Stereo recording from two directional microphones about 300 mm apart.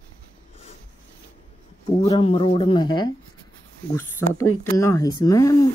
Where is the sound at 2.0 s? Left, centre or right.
Centre.